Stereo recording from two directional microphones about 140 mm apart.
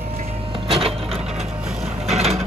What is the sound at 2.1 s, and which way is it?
Vehicle, 50° right (ahead or behind).